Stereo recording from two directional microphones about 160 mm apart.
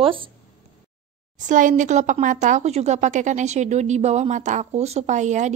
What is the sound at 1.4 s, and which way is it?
Speech, 50° right (ahead or behind).